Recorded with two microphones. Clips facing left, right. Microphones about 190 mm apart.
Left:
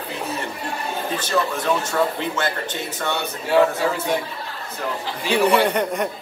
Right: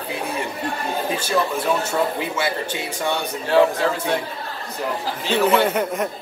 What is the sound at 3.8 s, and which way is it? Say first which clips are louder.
Speech: even; 10° left (ahead or behind).